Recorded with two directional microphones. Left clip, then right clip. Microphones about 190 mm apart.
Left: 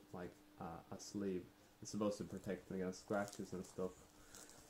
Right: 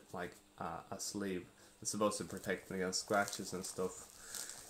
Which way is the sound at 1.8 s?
Centre (ahead or behind).